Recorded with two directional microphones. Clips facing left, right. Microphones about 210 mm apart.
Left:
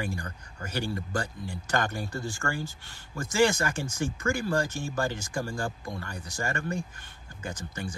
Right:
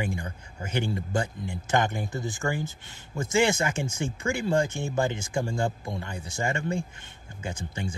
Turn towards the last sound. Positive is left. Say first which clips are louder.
# right 2 dB
turn(degrees=-25)  # may be behind; listen again after turning